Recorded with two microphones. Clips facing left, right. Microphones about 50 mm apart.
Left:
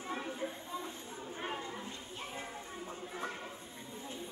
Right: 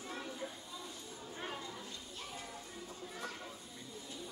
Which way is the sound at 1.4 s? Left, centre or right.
Left.